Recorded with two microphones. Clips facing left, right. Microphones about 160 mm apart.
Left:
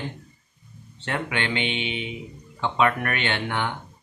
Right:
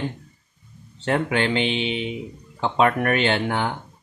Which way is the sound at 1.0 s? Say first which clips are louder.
Right 6 dB; 35° right (ahead or behind).